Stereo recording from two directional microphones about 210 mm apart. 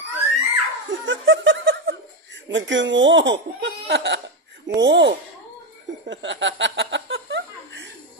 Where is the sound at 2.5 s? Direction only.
60° right (ahead or behind).